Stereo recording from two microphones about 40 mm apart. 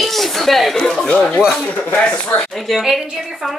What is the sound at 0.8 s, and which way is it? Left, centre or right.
Speech, left.